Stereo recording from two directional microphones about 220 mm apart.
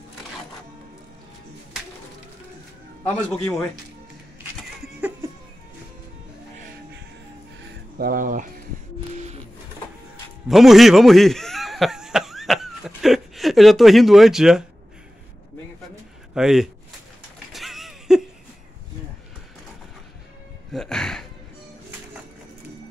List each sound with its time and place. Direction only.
3.4 s speech: 5° left (ahead or behind)
4.8 s a sound: 5° right (ahead or behind)
8.0 s speech: 40° right (ahead or behind)
10.5 s cough: centre (ahead or behind)
16.3 s speech: centre (ahead or behind)
17.5 s a sound: centre (ahead or behind)
20.7 s music: centre (ahead or behind)